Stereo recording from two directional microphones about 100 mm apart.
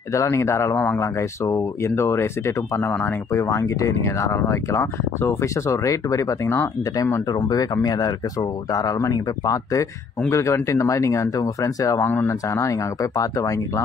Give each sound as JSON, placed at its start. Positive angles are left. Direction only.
{"t": 0.1, "sound": "speech", "side_deg": 30}
{"t": 7.3, "sound": "speech", "side_deg": 40}
{"t": 12.0, "sound": "speech", "side_deg": 20}
{"t": 12.3, "sound": "speech", "side_deg": 30}